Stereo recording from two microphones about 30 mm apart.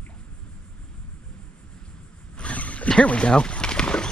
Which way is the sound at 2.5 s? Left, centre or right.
Left.